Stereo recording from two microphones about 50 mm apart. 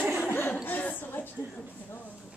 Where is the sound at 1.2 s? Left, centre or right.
Left.